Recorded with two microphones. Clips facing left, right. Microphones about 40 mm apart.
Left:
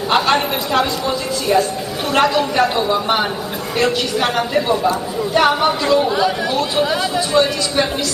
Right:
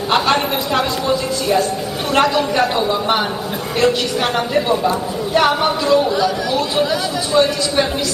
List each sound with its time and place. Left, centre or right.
0.1 s a man's voice: centre
6.0 s speech: centre
6.5 s a man's voice: centre